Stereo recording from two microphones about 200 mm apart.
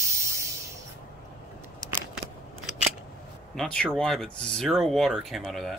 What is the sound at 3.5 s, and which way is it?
Speech, 5° left (ahead or behind).